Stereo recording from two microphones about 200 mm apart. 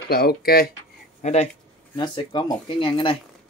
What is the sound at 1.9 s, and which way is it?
Speech, 20° left (ahead or behind).